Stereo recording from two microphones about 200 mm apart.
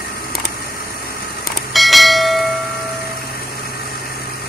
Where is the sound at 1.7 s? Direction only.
Centre (ahead or behind).